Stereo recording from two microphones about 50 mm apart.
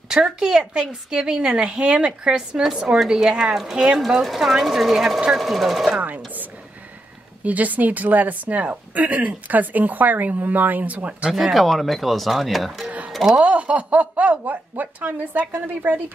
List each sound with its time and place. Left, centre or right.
0.1 s a woman's voice: centre
5.9 s sewing machine: right
7.4 s a woman's voice: right
11.3 s speech: centre
13.1 s a sound: centre
13.4 s a woman's voice: right